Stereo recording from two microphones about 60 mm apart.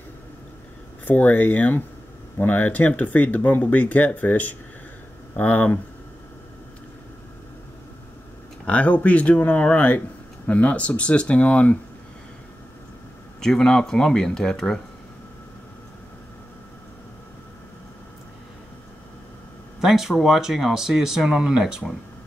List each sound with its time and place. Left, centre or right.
1.0 s speech: left
8.6 s speech: left
13.4 s speech: centre
19.8 s speech: centre